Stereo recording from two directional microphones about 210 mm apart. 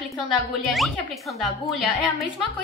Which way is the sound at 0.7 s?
Centre (ahead or behind).